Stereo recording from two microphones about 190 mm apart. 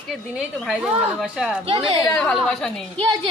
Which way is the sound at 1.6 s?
25° right (ahead or behind).